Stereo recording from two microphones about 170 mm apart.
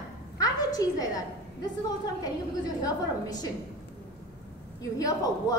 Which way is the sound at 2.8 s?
20° left (ahead or behind).